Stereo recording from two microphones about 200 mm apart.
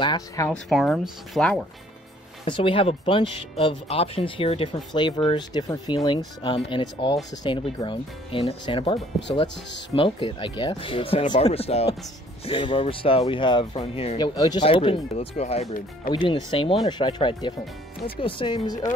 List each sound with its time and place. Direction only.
0.0 s speech: 20° left (ahead or behind)
0.5 s speech: centre (ahead or behind)
2.4 s speech: 25° left (ahead or behind)
9.7 s speech: 60° left (ahead or behind)
9.9 s speech: 25° left (ahead or behind)
16.1 s speech: 25° left (ahead or behind)